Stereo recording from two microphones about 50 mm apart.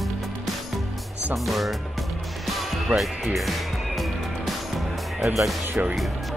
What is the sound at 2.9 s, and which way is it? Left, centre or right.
Speech, right.